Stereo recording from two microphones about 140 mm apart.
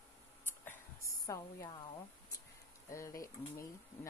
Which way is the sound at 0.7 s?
20° left (ahead or behind).